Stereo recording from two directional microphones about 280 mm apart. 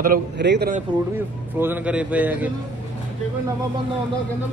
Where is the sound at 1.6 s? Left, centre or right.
Centre.